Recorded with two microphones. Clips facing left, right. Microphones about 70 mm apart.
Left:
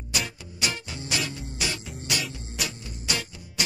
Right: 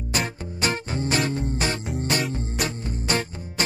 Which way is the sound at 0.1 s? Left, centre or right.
Right.